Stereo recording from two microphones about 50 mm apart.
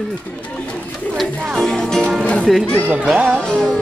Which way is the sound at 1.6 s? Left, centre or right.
Centre.